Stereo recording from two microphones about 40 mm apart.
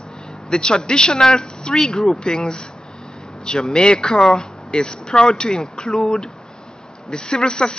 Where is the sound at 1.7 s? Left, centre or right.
Centre.